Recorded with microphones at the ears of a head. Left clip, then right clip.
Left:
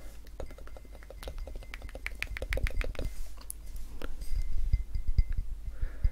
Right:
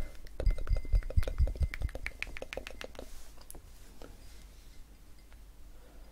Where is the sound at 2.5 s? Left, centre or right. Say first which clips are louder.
Left 5 dB; left.